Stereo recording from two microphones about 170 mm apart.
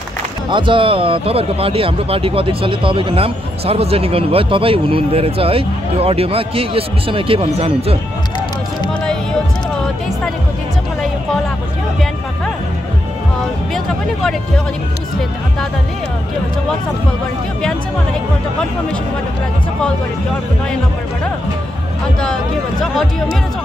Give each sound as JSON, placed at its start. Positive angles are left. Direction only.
{"t": 0.5, "sound": "speech", "side_deg": -30}